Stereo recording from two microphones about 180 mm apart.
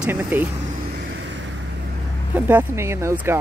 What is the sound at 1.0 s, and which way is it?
Vehicle, 80° right.